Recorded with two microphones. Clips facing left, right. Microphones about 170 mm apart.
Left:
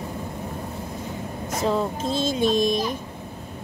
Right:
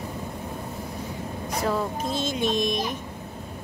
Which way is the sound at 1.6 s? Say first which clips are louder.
Left 3 dB; 25° left (ahead or behind).